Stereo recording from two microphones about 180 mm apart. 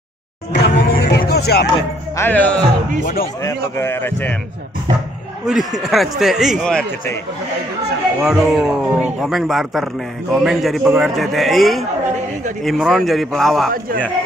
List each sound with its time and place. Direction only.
0.5 s music: 70° left (ahead or behind)
2.1 s a man's voice: 10° left (ahead or behind)
5.4 s a man's voice: centre (ahead or behind)
8.2 s a man's voice: 5° right (ahead or behind)